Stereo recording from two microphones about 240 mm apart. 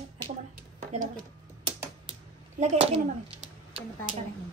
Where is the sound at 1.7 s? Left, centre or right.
Centre.